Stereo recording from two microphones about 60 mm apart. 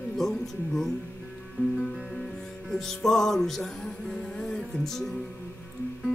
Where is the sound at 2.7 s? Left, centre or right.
Centre.